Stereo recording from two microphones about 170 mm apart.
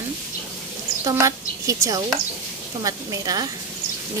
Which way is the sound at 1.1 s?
20° right (ahead or behind).